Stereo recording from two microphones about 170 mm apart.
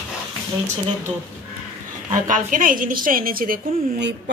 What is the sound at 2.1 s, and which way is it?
A woman's voice, 50° right (ahead or behind).